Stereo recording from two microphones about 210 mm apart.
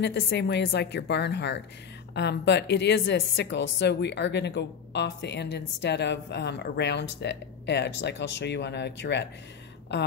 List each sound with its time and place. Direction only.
0.0 s a woman's voice: 55° left (ahead or behind)